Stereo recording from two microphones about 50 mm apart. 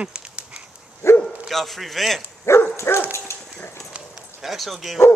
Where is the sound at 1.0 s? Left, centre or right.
Left.